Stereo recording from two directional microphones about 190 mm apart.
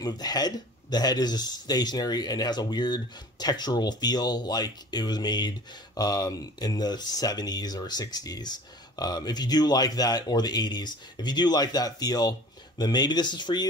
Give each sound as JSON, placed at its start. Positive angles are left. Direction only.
{"t": 0.0, "sound": "speech", "side_deg": 20}